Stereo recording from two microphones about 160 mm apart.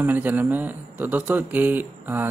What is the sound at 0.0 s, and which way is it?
Speech, 10° right (ahead or behind).